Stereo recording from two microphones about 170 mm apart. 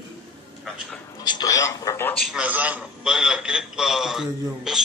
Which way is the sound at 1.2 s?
25° left (ahead or behind).